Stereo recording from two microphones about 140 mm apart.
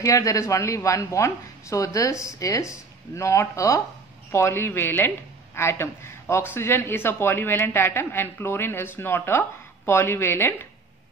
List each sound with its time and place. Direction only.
0.0 s a woman's voice: 25° left (ahead or behind)